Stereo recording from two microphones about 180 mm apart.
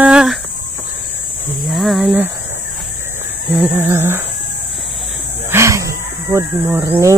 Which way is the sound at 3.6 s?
10° right (ahead or behind).